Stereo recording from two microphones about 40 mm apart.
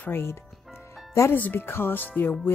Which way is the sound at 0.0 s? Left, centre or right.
Left.